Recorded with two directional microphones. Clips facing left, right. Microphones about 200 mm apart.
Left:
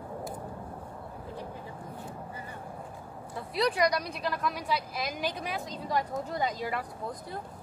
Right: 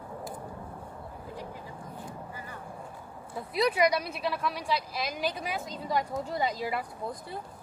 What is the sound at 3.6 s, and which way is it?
Speech, 5° right (ahead or behind).